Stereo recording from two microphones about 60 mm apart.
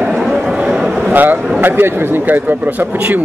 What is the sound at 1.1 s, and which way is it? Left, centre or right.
A man's voice, right.